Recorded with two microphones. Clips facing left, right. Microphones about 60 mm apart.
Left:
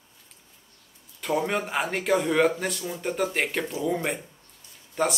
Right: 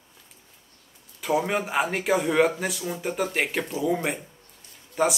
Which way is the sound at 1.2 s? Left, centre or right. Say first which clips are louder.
Right 1 dB; centre.